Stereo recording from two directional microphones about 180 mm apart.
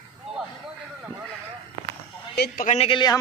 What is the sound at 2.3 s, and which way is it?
Speech, 65° left (ahead or behind).